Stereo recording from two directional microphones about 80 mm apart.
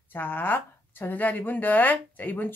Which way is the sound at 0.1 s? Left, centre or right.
Left.